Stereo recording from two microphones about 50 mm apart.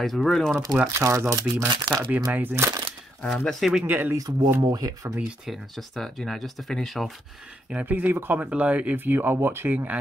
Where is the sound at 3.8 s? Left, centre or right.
Right.